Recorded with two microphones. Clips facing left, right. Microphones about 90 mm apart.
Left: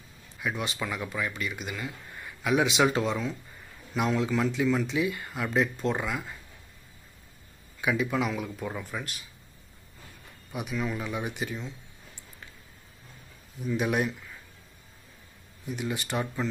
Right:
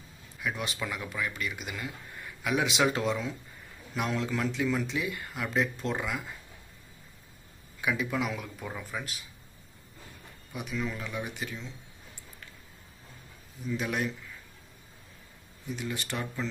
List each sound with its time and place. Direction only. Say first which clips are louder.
0.4 s speech: left 2 dB; 5° left (ahead or behind)
7.8 s speech: left 3 dB; 5° left (ahead or behind)
10.5 s speech: left 3 dB; 10° left (ahead or behind)
13.7 s speech: left 4 dB; 20° left (ahead or behind)
15.7 s speech: left 4 dB; 15° left (ahead or behind)